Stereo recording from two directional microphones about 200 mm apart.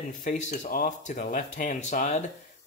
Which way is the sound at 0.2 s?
35° left (ahead or behind).